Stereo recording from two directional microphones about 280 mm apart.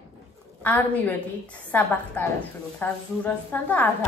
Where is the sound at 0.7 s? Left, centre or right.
Centre.